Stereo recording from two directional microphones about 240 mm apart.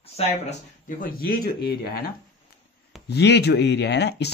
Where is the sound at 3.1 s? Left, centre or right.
Left.